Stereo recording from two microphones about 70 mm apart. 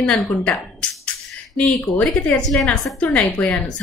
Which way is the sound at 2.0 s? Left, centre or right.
Centre.